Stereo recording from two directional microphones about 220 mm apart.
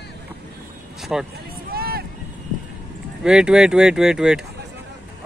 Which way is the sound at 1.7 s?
45° right (ahead or behind).